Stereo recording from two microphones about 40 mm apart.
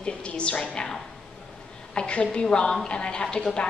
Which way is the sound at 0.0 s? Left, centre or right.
Left.